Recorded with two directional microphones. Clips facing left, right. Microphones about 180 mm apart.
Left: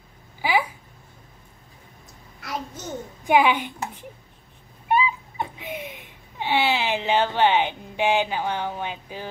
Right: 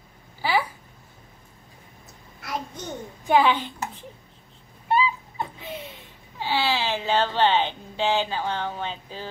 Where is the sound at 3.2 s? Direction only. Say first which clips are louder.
Left 1 dB; 15° left (ahead or behind).